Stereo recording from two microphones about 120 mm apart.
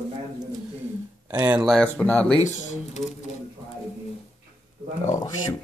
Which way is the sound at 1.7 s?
5° left (ahead or behind).